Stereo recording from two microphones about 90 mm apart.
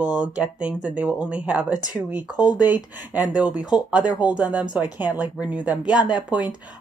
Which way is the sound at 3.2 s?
15° right (ahead or behind).